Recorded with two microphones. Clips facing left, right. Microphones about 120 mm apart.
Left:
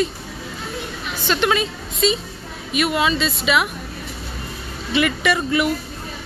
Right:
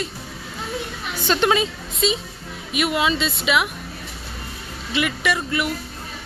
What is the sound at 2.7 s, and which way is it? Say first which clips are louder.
Speech: left 2 dB; 15° right (ahead or behind).